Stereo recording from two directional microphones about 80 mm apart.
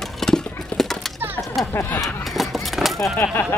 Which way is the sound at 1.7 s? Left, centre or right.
Left.